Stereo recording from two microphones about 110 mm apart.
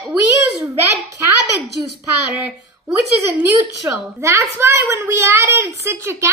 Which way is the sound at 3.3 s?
20° right (ahead or behind).